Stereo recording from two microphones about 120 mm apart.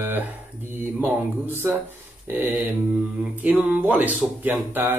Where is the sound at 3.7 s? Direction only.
10° right (ahead or behind).